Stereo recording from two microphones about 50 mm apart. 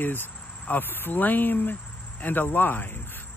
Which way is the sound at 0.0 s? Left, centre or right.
Left.